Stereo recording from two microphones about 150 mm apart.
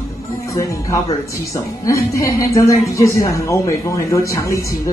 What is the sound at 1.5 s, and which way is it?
A woman's voice, 20° left (ahead or behind).